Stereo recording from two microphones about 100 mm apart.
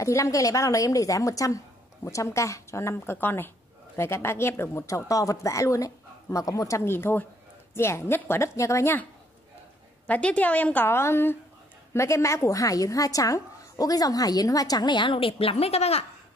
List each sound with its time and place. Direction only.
0.0 s a woman's voice: 30° left (ahead or behind)
10.0 s a woman's voice: 15° left (ahead or behind); by 16.1 s 90° left